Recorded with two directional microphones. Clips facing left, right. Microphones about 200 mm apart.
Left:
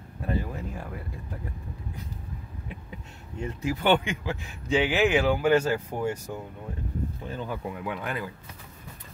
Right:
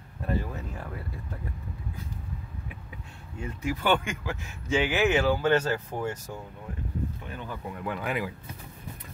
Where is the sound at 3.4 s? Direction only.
25° left (ahead or behind).